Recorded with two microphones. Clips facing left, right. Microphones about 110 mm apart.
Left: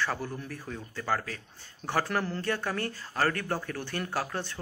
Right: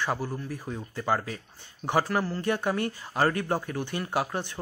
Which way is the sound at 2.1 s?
5° right (ahead or behind).